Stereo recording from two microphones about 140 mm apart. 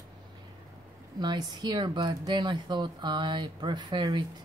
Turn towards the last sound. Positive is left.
turn(degrees=-30)  # may be behind; listen again after turning